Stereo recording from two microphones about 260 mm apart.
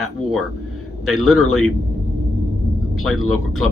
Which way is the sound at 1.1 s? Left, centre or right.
Centre.